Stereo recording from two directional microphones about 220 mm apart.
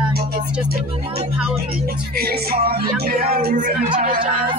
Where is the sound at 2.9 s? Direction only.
45° right (ahead or behind).